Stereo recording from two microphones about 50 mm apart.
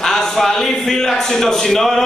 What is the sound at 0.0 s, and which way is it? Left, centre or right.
Speech, centre.